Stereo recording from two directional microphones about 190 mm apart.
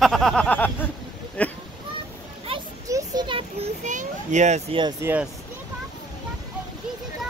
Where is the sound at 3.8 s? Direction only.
40° right (ahead or behind).